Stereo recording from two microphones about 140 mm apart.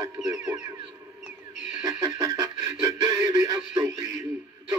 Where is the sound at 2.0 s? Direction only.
25° right (ahead or behind).